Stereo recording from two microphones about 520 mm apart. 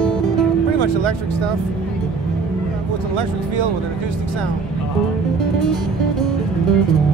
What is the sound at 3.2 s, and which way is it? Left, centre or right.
Speech, right.